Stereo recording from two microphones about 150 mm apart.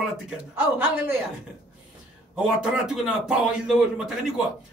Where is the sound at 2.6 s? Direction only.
5° right (ahead or behind).